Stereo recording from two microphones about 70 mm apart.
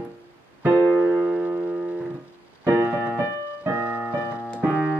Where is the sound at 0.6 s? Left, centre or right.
Right.